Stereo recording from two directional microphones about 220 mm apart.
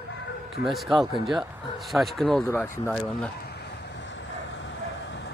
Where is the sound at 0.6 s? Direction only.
Centre (ahead or behind).